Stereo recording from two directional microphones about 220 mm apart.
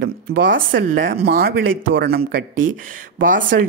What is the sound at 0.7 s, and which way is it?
A woman's voice, 55° right (ahead or behind).